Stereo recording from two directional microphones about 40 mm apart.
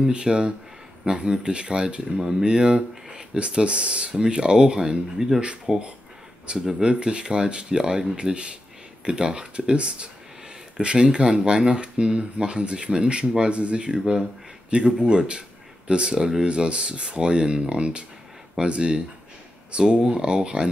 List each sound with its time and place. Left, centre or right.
0.1 s speech: right